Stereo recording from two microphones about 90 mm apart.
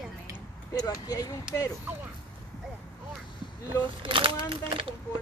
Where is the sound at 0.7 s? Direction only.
45° left (ahead or behind).